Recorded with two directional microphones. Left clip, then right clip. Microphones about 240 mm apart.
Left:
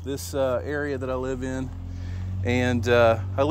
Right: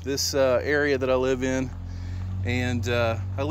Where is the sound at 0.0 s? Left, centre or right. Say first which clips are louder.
Right 3 dB; centre.